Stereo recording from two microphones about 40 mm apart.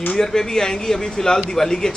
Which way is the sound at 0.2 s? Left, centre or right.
Centre.